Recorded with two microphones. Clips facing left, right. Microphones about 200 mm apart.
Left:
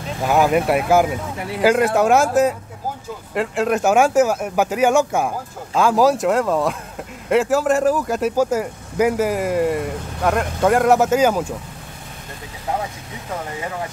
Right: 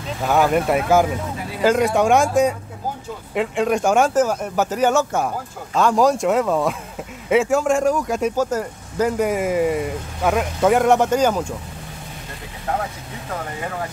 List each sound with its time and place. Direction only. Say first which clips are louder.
0.3 s speech: left 1 dB; 5° left (ahead or behind)